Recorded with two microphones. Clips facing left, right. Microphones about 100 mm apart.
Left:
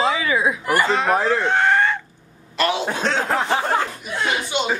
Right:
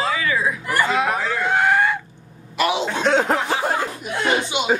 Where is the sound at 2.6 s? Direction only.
15° right (ahead or behind).